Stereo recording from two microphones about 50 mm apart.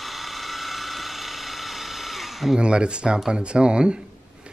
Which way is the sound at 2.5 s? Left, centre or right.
Centre.